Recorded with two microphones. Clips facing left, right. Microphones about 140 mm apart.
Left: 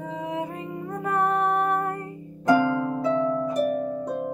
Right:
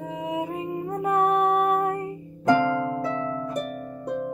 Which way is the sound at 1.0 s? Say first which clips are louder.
Right 2 dB; 15° right (ahead or behind).